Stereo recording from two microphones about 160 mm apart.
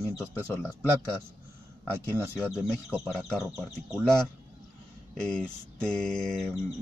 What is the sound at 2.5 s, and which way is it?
Speech, 5° right (ahead or behind).